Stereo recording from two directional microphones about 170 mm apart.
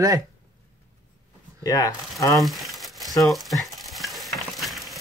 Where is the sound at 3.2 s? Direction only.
Centre (ahead or behind).